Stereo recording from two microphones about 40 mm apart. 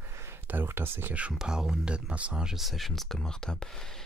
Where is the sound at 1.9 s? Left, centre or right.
Right.